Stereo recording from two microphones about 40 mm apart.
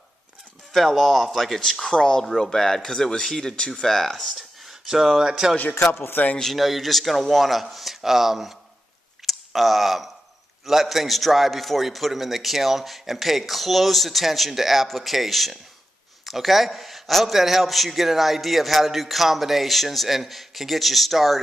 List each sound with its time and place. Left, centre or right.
0.7 s a man's voice: centre
3.5 s speech: left
3.8 s speech: centre
4.6 s speech: centre
5.9 s speech: left
6.4 s a man's voice: centre
9.2 s clicking: centre
10.6 s a man's voice: centre